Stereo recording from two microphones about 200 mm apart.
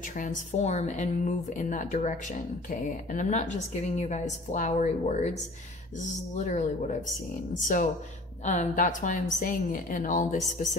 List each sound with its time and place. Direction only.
0.1 s speech: 40° left (ahead or behind)